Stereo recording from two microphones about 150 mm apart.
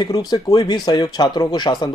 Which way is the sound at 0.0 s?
30° left (ahead or behind).